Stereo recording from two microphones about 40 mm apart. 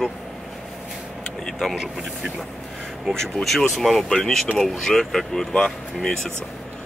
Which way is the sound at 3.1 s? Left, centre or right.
Centre.